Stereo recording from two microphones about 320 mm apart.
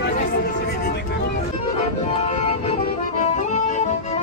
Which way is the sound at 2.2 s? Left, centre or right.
Left.